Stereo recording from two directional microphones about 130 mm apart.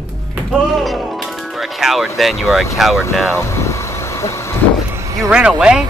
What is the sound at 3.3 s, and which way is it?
Vehicle, 20° left (ahead or behind).